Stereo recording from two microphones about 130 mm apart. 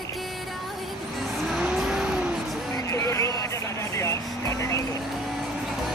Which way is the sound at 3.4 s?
25° left (ahead or behind).